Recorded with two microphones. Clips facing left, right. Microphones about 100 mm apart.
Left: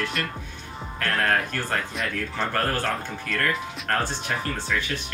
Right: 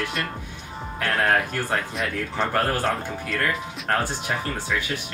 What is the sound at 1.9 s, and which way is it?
Speech, centre (ahead or behind).